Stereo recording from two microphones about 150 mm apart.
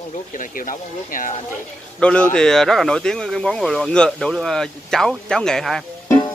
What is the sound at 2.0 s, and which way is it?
Speech, 5° left (ahead or behind).